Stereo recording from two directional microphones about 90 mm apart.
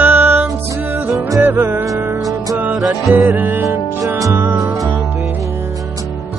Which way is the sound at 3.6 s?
35° right (ahead or behind).